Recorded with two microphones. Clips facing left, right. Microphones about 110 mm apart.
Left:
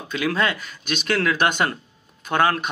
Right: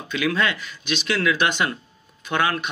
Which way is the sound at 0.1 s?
35° left (ahead or behind).